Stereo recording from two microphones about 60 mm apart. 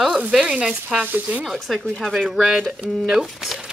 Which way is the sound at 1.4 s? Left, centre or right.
Centre.